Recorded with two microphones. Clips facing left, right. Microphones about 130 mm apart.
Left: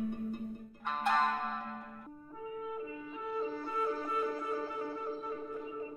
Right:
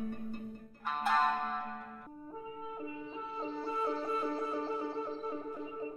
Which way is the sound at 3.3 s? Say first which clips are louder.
Left 1 dB; 25° right (ahead or behind).